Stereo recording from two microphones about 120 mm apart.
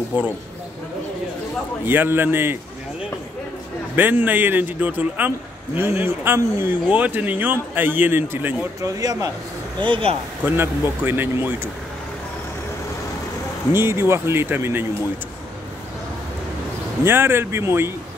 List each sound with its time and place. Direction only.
0.1 s a man's voice: 15° right (ahead or behind)
1.9 s a man's voice: 20° right (ahead or behind)
3.9 s a man's voice: 15° right (ahead or behind)
9.0 s speech: 30° right (ahead or behind)
9.8 s speech: 40° right (ahead or behind)
10.4 s a man's voice: 20° right (ahead or behind)
13.7 s speech: 20° right (ahead or behind)
17.0 s speech: 20° right (ahead or behind)